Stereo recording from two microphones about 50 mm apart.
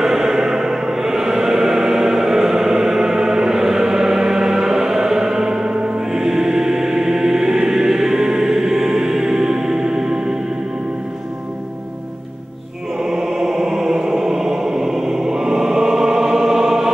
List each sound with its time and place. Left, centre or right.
0.0 s music: centre
13.0 s chant: centre